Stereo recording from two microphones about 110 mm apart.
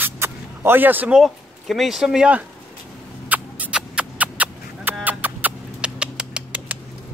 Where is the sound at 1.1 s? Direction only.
Centre (ahead or behind).